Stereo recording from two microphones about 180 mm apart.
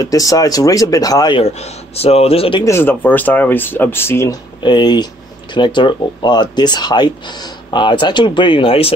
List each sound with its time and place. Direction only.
0.0 s speech: 20° left (ahead or behind)
1.4 s speech: 35° left (ahead or behind)
2.6 s speech: 15° left (ahead or behind)
4.6 s speech: 25° left (ahead or behind)